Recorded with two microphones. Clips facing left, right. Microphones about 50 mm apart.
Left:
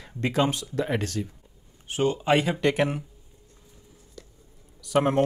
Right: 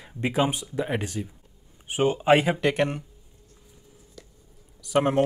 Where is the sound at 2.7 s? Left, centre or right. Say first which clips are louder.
Even; centre.